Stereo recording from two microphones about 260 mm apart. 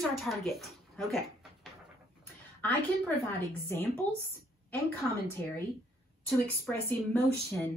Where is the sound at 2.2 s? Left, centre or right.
Centre.